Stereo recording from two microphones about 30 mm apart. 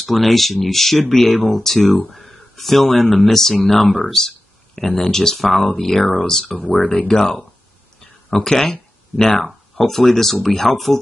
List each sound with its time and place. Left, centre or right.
0.0 s speech: centre
6.7 s speech: left
7.0 s speech: centre